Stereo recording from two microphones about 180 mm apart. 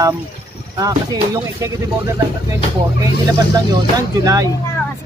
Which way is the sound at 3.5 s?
20° right (ahead or behind).